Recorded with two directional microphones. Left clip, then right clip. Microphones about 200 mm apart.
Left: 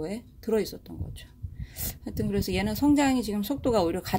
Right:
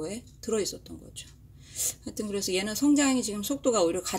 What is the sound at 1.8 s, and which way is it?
Speech, 45° left (ahead or behind).